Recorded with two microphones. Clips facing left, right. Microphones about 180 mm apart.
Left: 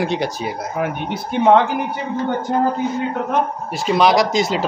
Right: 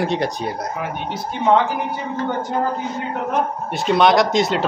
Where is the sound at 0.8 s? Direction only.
60° left (ahead or behind).